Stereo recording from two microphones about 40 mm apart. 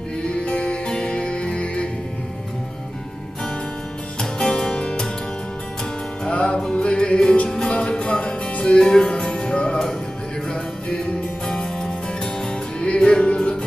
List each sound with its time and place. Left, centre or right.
0.2 s music: left
4.2 s music: centre
6.2 s music: left